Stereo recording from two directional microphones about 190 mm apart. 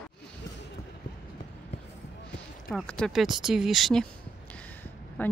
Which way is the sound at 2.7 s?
5° left (ahead or behind).